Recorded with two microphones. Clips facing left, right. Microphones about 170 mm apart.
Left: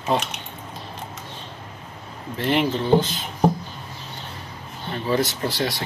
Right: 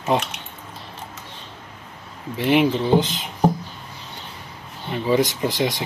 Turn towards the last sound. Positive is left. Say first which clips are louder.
# right 3 dB
turn(degrees=-20)  # may be behind; listen again after turning